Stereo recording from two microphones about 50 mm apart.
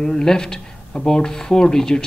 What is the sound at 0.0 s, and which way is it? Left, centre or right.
Speech, centre.